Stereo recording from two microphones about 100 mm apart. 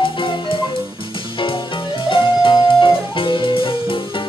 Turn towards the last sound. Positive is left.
turn(degrees=65)  # may be behind; listen again after turning